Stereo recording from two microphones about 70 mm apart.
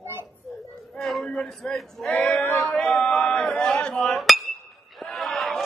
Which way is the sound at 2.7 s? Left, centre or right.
Centre.